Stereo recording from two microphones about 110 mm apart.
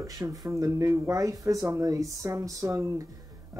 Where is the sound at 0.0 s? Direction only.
30° right (ahead or behind).